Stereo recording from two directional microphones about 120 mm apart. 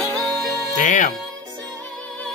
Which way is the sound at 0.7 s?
90° left.